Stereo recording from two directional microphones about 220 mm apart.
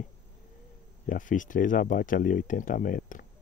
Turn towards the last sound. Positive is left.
turn(degrees=40)  # may be behind; listen again after turning